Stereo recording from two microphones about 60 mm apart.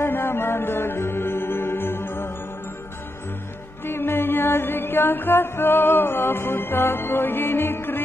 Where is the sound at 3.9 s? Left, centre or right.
Left.